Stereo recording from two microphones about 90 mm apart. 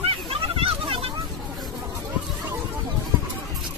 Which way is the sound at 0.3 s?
90° right.